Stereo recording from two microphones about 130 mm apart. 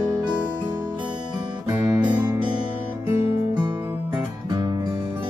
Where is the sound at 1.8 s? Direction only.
30° right (ahead or behind).